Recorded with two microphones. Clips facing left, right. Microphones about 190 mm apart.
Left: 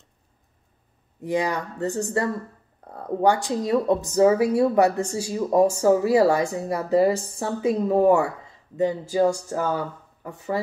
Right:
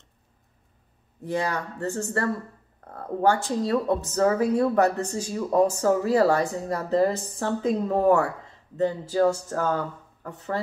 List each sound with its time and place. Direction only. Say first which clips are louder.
1.2 s a woman's voice: left 3 dB; 15° left (ahead or behind)